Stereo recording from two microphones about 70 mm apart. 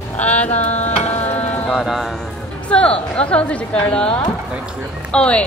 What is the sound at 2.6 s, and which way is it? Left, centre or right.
Speech, centre.